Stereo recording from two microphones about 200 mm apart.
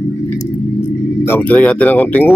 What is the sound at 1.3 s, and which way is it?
Speech, 5° left (ahead or behind).